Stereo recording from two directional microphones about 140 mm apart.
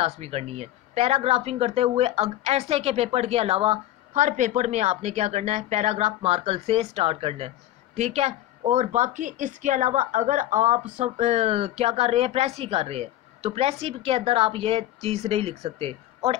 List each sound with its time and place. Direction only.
0.0 s speech: 50° right (ahead or behind)